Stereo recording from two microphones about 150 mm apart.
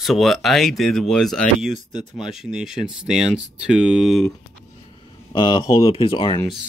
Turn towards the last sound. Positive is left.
turn(degrees=35)  # may be behind; listen again after turning